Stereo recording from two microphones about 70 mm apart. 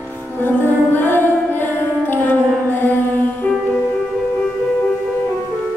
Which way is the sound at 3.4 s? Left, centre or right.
Centre.